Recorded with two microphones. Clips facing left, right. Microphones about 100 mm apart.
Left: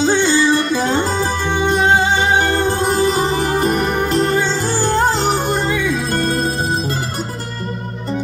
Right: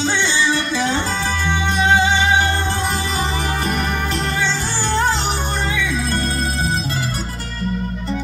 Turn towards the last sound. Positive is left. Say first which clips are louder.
# left 2 dB
turn(degrees=45)  # may be behind; listen again after turning